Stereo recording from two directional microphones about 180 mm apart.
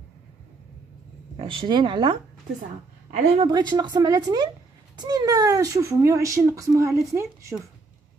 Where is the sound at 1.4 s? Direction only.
30° right (ahead or behind).